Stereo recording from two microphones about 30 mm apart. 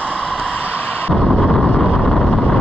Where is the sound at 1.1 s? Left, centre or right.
Centre.